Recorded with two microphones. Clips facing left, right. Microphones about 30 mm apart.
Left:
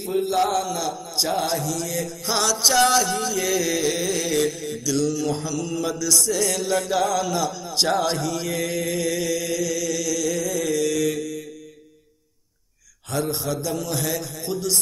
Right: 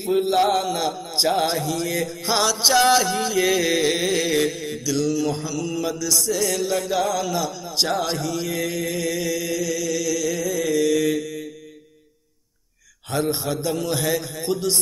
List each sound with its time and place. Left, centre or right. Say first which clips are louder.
0.0 s mantra: right 3 dB; right
2.2 s music: right 1 dB; centre
13.4 s mantra: right 2 dB; right